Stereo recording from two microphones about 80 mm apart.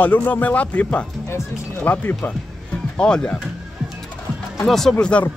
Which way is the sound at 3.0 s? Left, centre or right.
Centre.